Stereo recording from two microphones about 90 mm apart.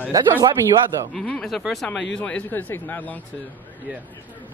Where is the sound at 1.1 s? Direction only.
5° left (ahead or behind).